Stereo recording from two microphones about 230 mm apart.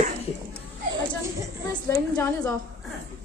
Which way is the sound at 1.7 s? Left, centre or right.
Centre.